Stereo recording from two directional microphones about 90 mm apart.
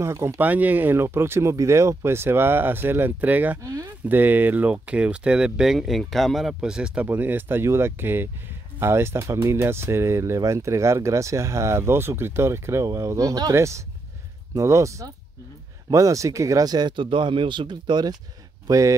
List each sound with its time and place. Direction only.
0.0 s speech: 35° right (ahead or behind)
0.4 s speech: 20° right (ahead or behind)
7.1 s speech: 20° right (ahead or behind); by 18.1 s 55° right (ahead or behind)
18.7 s speech: 35° right (ahead or behind)